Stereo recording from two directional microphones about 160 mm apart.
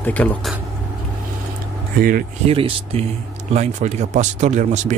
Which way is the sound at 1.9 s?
65° right (ahead or behind).